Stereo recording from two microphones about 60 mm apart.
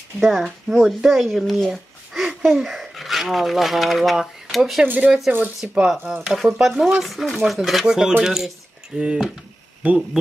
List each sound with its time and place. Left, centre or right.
0.2 s speech: centre
4.8 s speech: right
5.6 s speech: centre
6.3 s speech: centre
8.9 s speech: centre